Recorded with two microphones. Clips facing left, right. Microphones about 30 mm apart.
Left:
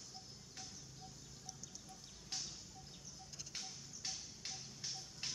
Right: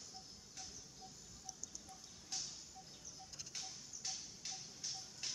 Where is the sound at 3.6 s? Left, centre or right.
Centre.